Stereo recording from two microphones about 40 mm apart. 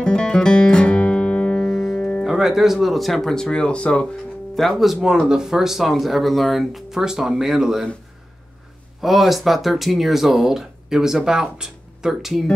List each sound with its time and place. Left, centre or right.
0.0 s music: left
1.7 s music: centre
2.0 s music: left
2.2 s speech: centre
3.4 s speech: left
4.6 s speech: centre
5.0 s speech: centre
7.0 s speech: centre
9.0 s speech: centre
12.1 s speech: centre